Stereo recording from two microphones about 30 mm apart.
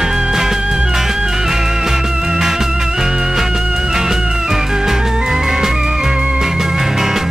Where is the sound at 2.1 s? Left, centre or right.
Right.